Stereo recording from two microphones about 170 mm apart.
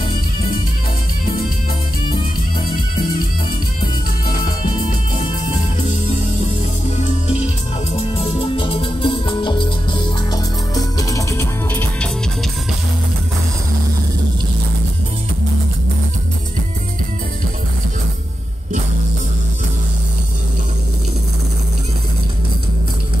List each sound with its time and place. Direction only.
7.0 s music: 45° left (ahead or behind); by 12.1 s 10° left (ahead or behind)